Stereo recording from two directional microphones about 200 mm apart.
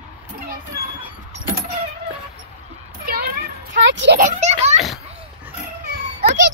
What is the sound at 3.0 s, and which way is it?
Children playing, 50° right (ahead or behind).